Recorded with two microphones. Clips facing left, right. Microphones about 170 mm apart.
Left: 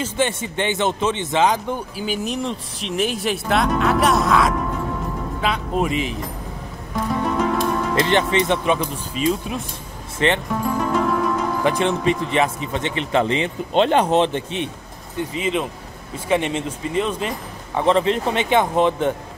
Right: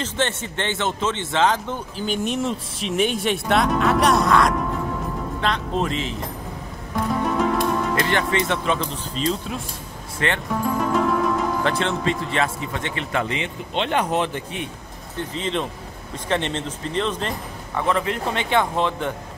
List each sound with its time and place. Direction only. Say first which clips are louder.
0.0 s speech: left 3 dB; 10° left (ahead or behind)
7.1 s music: left 1 dB; centre (ahead or behind)
7.9 s speech: left 3 dB; 20° left (ahead or behind)
10.5 s music: left 1 dB; centre (ahead or behind)
11.6 s a man's voice: left 3 dB; 15° left (ahead or behind)
15.1 s speech: left 3 dB; 10° left (ahead or behind)
17.7 s a man's voice: left 5 dB; 25° left (ahead or behind)